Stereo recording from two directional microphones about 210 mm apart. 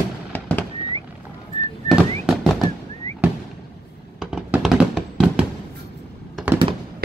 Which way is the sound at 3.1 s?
30° right (ahead or behind).